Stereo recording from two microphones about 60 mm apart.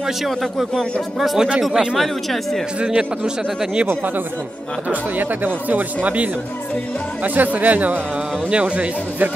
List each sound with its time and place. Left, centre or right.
0.3 s a man's voice: centre
2.0 s speech: centre
2.8 s a man's voice: centre
3.8 s speech: right